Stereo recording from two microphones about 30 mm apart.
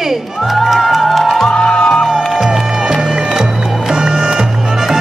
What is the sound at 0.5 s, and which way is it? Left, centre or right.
Music, centre.